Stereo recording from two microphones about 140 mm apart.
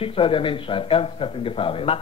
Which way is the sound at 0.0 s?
40° left (ahead or behind).